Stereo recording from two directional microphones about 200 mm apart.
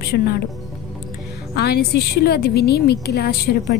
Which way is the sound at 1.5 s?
55° left (ahead or behind).